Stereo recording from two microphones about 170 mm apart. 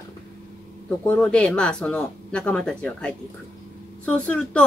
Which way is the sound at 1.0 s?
5° left (ahead or behind).